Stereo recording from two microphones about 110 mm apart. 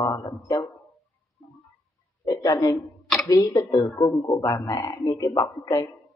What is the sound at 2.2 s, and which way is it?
A man's voice, 40° left (ahead or behind).